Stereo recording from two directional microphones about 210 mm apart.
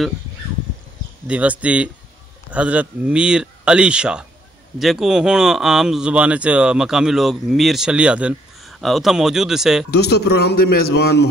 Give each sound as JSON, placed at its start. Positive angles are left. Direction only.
{"t": 1.2, "sound": "speech", "side_deg": -5}
{"t": 9.8, "sound": "a man's voice", "side_deg": 50}